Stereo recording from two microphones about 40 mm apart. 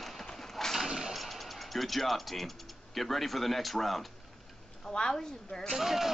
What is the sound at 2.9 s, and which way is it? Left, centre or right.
Speech, centre.